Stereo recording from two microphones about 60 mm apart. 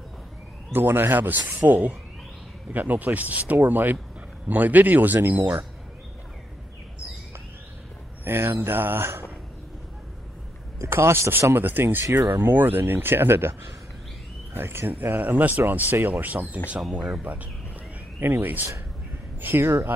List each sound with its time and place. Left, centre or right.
0.7 s speech: right
8.2 s speech: right
10.8 s speech: right